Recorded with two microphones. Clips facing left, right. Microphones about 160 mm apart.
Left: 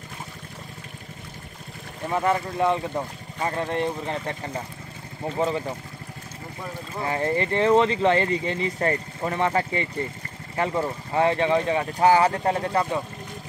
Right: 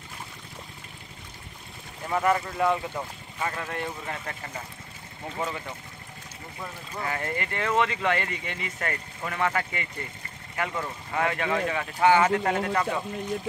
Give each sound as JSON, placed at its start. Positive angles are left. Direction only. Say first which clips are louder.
{"t": 2.1, "sound": "speech", "louder": "left 1 dB", "side_deg": 20}
{"t": 7.0, "sound": "speech", "louder": "left 7 dB", "side_deg": 30}